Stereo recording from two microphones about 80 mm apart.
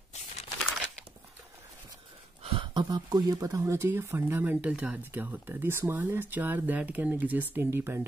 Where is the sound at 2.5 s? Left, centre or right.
Right.